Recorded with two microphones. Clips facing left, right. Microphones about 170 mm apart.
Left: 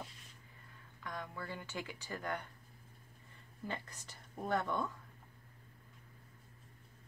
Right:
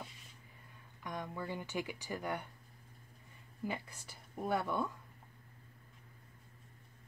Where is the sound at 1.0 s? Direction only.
20° right (ahead or behind).